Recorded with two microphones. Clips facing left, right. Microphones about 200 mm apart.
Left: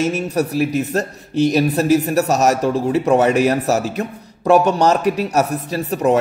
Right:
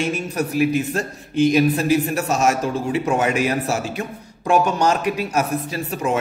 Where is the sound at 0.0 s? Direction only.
40° left (ahead or behind).